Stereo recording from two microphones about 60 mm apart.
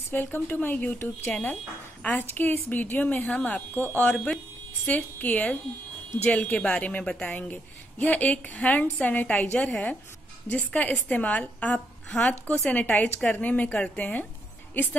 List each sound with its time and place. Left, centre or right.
0.1 s speech: left
1.3 s a woman's voice: left